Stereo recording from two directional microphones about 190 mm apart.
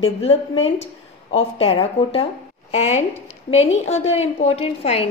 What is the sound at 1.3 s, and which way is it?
A woman's voice, 30° left (ahead or behind).